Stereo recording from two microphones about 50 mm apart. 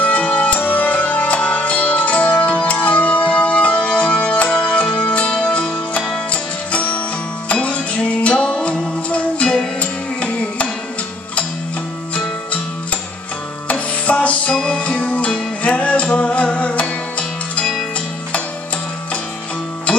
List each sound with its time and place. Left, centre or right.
0.0 s music: left
13.7 s music: left